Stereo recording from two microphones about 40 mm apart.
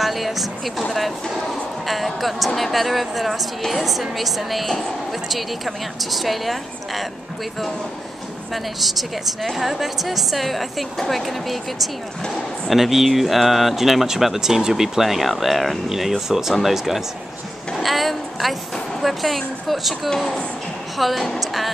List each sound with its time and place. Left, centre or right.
0.0 s a woman's voice: centre
5.9 s a woman's voice: centre
8.7 s a woman's voice: centre
20.1 s speech: centre
21.0 s a woman's voice: centre